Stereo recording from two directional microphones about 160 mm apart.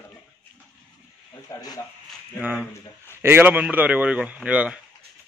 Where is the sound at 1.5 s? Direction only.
25° left (ahead or behind).